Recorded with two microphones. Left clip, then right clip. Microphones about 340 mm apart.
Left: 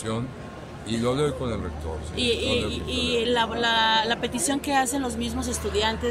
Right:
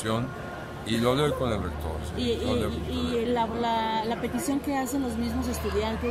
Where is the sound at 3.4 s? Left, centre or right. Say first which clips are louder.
Left 4 dB; left.